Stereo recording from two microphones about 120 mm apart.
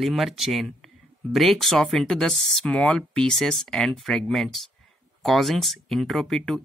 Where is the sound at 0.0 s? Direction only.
Centre (ahead or behind).